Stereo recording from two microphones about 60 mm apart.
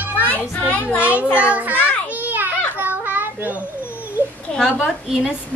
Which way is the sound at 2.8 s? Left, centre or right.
Right.